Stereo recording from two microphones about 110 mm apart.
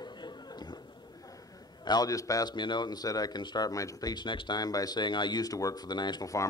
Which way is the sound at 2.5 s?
45° left (ahead or behind).